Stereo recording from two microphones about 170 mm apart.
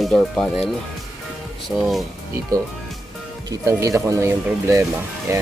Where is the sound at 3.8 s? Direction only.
20° right (ahead or behind).